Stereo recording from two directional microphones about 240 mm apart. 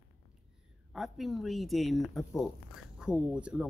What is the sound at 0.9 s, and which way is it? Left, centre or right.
Speech, centre.